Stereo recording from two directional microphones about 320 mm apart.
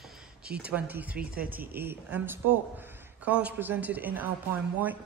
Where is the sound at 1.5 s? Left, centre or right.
Centre.